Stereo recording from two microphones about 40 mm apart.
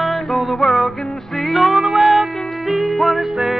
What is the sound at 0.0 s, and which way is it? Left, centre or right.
Music, centre.